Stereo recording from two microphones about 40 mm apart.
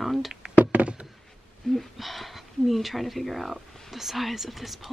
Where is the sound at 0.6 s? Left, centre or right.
Right.